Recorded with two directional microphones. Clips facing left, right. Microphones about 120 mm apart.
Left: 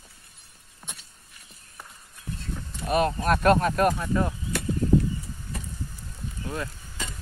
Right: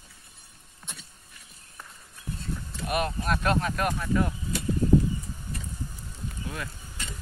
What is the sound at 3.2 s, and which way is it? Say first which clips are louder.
Speech: left 6 dB; 50° left (ahead or behind).